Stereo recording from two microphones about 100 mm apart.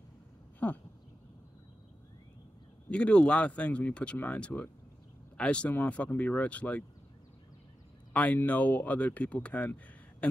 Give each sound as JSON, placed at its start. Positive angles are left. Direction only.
{"t": 0.6, "sound": "a sound", "side_deg": 15}
{"t": 2.9, "sound": "speech", "side_deg": 10}
{"t": 8.1, "sound": "speech", "side_deg": 15}